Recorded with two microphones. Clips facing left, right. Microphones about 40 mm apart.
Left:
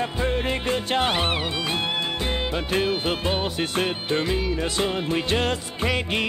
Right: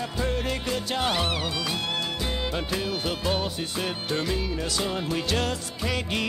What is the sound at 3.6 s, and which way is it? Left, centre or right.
Music, left.